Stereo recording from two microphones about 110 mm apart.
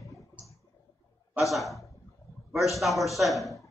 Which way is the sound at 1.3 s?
Centre (ahead or behind).